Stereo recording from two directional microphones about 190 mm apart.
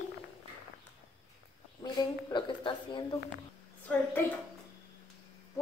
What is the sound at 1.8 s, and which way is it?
A woman's voice, 25° left (ahead or behind).